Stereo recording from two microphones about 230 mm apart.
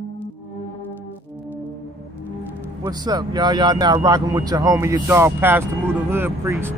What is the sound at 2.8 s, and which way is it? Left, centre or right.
Speech, centre.